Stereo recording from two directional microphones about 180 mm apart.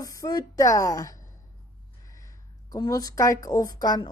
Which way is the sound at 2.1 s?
20° left (ahead or behind).